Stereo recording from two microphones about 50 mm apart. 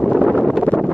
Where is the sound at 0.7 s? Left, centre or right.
Centre.